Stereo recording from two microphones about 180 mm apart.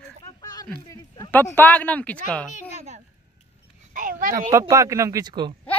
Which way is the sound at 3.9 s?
50° right (ahead or behind).